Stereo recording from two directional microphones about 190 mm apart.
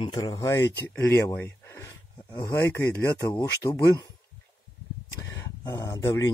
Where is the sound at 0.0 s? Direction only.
20° left (ahead or behind).